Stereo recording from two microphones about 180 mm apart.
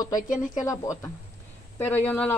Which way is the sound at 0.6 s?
20° left (ahead or behind).